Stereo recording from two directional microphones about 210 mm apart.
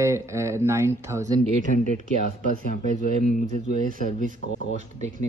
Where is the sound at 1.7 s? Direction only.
35° left (ahead or behind).